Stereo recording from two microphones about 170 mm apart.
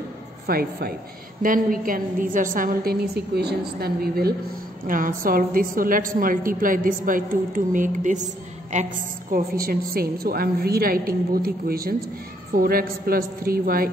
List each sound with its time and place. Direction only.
0.5 s a woman's voice: 60° right (ahead or behind)
4.8 s a woman's voice: 55° right (ahead or behind)